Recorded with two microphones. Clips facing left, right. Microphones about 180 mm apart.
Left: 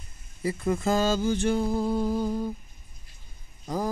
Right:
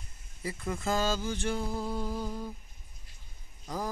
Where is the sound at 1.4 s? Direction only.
40° left (ahead or behind).